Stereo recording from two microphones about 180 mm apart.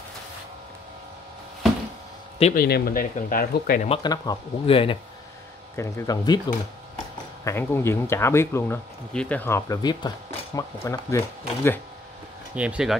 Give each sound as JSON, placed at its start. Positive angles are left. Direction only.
{"t": 2.5, "sound": "speech", "side_deg": 55}
{"t": 4.0, "sound": "speech", "side_deg": 20}
{"t": 5.8, "sound": "speech", "side_deg": 20}
{"t": 7.4, "sound": "speech", "side_deg": 15}
{"t": 12.5, "sound": "speech", "side_deg": -5}